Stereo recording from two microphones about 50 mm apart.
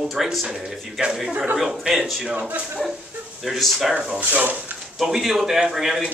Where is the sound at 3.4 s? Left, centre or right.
Centre.